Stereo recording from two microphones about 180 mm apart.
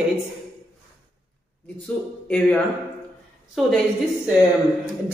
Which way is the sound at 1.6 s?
5° left (ahead or behind).